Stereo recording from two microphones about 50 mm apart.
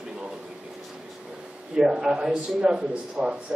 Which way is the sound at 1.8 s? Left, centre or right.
Centre.